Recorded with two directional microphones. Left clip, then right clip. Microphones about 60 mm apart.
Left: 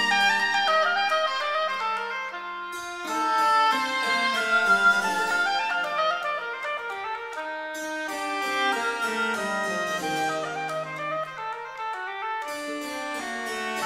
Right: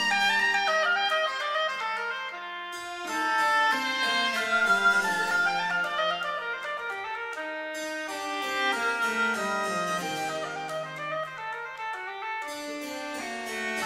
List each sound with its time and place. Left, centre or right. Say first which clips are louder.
0.0 s music: left 2 dB; left
3.1 s music: left 3 dB; left
4.6 s music: left 2 dB; centre
5.6 s clarinet: left 2 dB; left
8.4 s music: left 2 dB; left
9.4 s music: left 1 dB; centre